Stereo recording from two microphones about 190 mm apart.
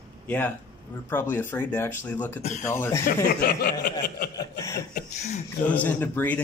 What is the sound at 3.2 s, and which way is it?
Speech, 50° left (ahead or behind).